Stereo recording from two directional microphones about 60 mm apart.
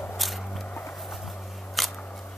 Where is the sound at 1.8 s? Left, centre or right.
Centre.